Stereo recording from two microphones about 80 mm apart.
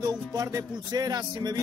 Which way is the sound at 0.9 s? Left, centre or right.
Right.